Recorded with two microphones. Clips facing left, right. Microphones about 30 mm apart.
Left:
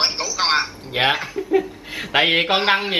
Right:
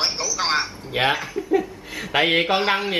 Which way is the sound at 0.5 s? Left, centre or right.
Left.